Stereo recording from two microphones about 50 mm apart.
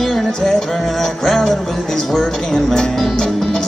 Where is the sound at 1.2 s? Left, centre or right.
Centre.